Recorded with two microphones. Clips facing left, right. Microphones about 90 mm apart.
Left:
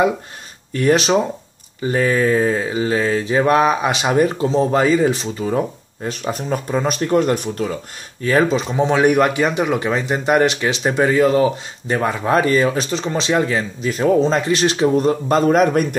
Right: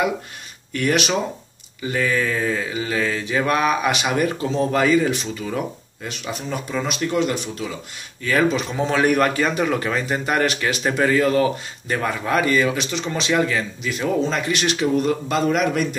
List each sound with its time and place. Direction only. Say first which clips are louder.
0.7 s a man's voice: left 5 dB; 30° left (ahead or behind); by 7.7 s 45° left (ahead or behind)
8.2 s a man's voice: left 3 dB; 30° left (ahead or behind); by 16.0 s 45° left (ahead or behind)